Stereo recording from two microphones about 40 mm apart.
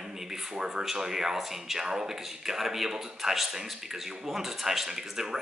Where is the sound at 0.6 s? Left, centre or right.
Right.